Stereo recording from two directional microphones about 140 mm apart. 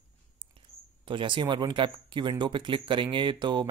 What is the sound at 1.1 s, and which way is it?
Speech, 35° right (ahead or behind).